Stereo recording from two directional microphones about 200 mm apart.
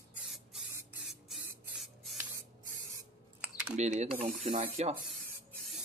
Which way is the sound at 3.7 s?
35° right (ahead or behind).